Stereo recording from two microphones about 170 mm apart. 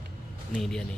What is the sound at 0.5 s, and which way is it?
Speech, 5° left (ahead or behind).